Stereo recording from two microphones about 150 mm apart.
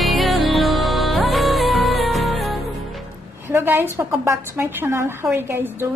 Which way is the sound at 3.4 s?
15° right (ahead or behind).